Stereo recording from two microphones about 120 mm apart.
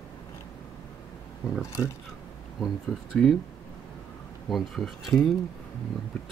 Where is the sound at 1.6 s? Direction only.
20° left (ahead or behind).